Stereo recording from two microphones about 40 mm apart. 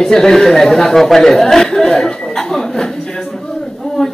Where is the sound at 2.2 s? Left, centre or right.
Centre.